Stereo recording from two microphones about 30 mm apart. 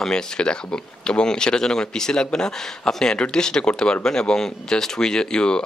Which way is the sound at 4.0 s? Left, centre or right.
Left.